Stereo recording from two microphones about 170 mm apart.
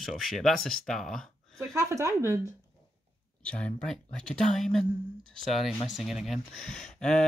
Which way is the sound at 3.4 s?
5° left (ahead or behind).